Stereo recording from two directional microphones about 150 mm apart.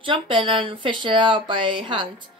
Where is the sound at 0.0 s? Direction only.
35° right (ahead or behind).